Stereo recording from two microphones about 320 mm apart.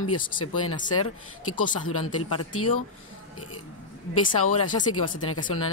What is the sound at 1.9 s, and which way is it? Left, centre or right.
Speech, left.